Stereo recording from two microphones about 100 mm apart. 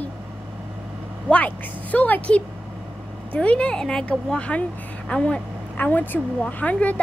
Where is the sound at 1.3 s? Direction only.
15° left (ahead or behind).